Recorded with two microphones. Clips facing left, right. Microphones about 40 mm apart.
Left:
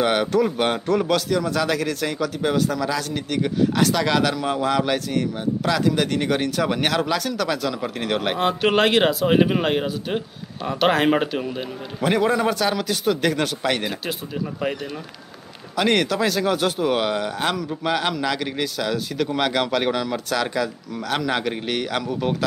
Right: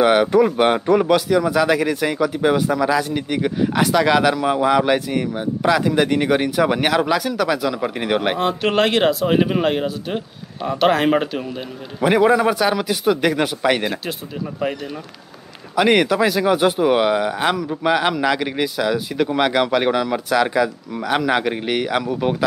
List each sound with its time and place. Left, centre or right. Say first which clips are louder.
0.0 s a man's voice: right 5 dB; centre
8.4 s speech: right 1 dB; centre
12.0 s a man's voice: right 5 dB; centre
15.7 s a man's voice: right 5 dB; centre